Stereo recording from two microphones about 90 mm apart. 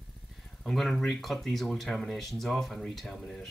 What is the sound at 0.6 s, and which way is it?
Speech, centre (ahead or behind).